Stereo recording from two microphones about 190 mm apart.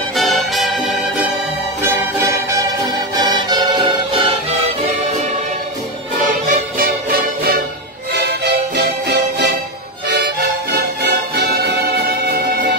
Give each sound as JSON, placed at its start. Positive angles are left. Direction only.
{"t": 0.1, "sound": "music", "side_deg": 0}
{"t": 1.8, "sound": "music", "side_deg": -15}
{"t": 6.1, "sound": "music", "side_deg": -45}